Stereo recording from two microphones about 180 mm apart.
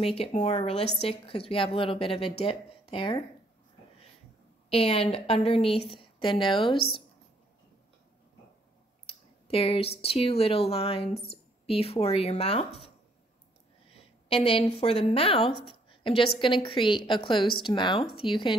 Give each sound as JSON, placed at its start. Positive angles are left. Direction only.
{"t": 0.0, "sound": "speech", "side_deg": 35}
{"t": 4.6, "sound": "speech", "side_deg": 30}
{"t": 9.0, "sound": "a sound", "side_deg": 30}
{"t": 10.0, "sound": "speech", "side_deg": 30}
{"t": 14.3, "sound": "a woman's voice", "side_deg": 30}